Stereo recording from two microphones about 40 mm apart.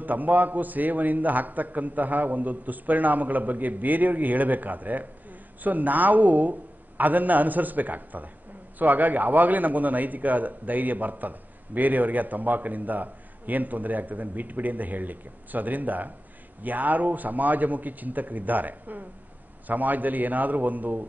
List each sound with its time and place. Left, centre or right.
0.0 s a man's voice: right